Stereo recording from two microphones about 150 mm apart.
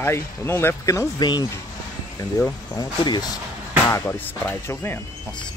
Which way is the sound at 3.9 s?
15° left (ahead or behind).